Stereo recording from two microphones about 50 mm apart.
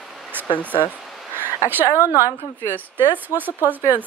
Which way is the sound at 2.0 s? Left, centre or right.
Left.